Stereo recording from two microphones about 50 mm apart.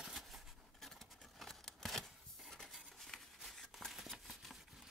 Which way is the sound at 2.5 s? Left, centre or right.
Centre.